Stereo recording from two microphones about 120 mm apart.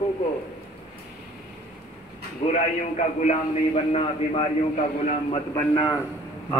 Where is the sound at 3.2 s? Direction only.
55° left (ahead or behind).